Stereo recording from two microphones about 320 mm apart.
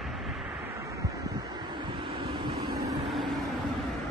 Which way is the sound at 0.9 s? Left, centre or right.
Centre.